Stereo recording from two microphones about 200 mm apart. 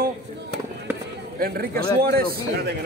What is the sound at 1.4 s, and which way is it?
A man's voice, 50° right (ahead or behind).